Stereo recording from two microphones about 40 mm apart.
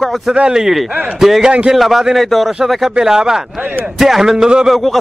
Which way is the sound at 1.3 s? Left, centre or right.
Centre.